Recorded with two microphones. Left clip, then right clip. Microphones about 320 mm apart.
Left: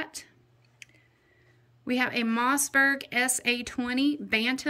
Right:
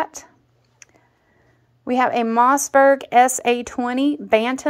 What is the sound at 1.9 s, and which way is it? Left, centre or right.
A woman's voice, centre.